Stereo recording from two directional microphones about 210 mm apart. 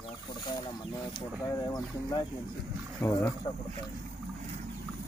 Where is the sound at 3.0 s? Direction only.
15° left (ahead or behind).